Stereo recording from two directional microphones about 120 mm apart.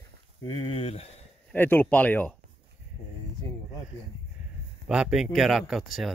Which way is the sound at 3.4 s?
25° left (ahead or behind).